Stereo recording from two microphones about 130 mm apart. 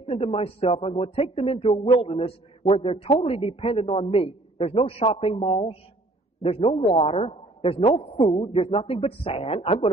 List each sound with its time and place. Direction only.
0.0 s speech: 45° left (ahead or behind)